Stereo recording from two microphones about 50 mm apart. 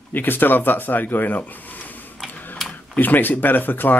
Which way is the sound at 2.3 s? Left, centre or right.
Left.